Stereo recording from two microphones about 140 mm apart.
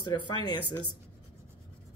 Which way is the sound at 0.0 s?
30° left (ahead or behind).